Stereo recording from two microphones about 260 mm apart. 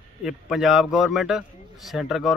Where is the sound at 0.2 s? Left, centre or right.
Centre.